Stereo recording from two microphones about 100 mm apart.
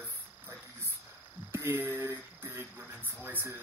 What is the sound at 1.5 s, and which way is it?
Speech, 20° right (ahead or behind).